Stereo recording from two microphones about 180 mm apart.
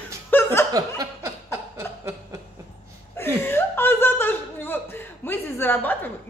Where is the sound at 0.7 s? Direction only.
20° right (ahead or behind).